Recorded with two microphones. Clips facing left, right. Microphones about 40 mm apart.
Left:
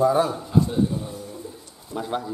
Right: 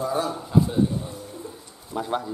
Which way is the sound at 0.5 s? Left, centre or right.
Centre.